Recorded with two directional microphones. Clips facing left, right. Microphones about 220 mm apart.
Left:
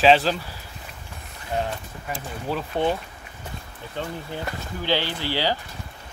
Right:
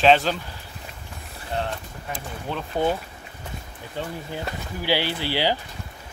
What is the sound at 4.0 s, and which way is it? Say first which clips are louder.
Speech: even; 10° right (ahead or behind).